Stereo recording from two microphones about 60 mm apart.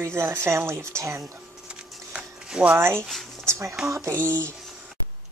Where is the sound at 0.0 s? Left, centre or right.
Right.